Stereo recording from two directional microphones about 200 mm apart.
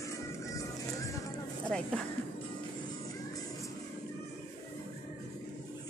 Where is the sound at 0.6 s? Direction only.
15° left (ahead or behind).